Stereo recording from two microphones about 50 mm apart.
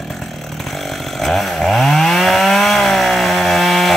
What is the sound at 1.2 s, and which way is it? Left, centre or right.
Chainsaw, centre.